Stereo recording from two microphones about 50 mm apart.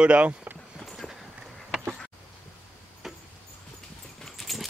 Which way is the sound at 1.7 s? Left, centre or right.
Centre.